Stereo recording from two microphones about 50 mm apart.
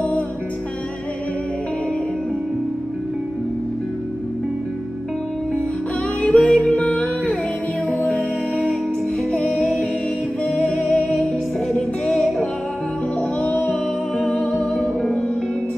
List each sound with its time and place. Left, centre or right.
6.2 s music: left
9.5 s music: centre
10.7 s music: centre
11.7 s music: centre
14.5 s music: centre